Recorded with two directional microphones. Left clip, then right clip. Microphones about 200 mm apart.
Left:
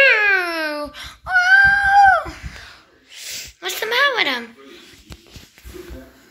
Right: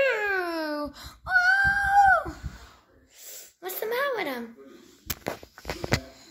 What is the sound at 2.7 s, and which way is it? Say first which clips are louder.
Rub: left 13 dB; 15° right (ahead or behind).